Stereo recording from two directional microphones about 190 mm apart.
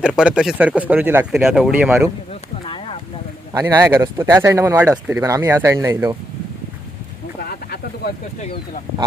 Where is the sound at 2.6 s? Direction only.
30° left (ahead or behind).